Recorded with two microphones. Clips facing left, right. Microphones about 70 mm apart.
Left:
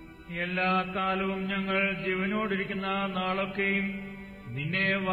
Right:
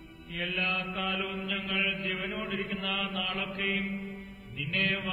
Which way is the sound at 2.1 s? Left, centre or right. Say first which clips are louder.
Left 5 dB; left.